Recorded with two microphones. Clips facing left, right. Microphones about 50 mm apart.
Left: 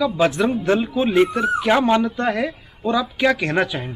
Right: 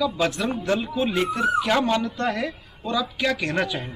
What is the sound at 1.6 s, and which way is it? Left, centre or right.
Speech, centre.